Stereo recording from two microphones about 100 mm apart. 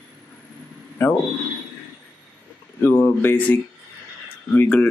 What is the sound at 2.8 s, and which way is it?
Speech, 25° left (ahead or behind).